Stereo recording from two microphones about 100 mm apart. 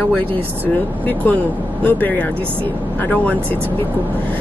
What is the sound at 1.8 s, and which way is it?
A woman's voice, 15° left (ahead or behind).